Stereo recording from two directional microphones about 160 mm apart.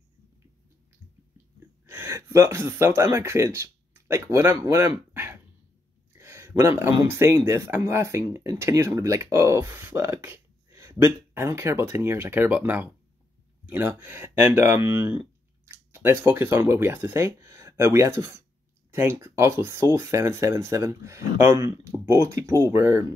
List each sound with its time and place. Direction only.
1.9 s speech: 15° right (ahead or behind)
6.1 s a sound: 15° right (ahead or behind)
7.1 s speech: 15° right (ahead or behind)
14.8 s speech: 30° left (ahead or behind)
15.7 s speech: 15° right (ahead or behind)